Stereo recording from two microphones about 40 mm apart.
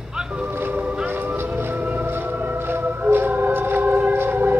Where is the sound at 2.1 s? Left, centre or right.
Right.